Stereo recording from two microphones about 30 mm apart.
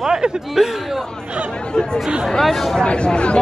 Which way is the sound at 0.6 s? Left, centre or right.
Centre.